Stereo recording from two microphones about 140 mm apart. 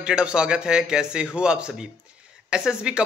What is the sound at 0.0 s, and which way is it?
A man's voice, 5° right (ahead or behind).